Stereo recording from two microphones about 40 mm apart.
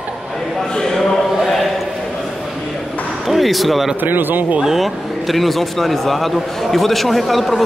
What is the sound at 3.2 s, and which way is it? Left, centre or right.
Speech, centre.